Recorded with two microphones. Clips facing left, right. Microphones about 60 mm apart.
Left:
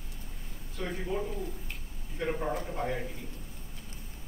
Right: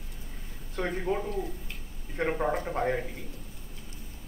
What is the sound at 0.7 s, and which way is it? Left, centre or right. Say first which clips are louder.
Speech: right 6 dB; right.